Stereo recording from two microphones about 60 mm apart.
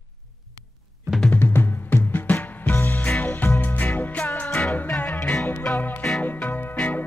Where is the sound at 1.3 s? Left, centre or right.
Left.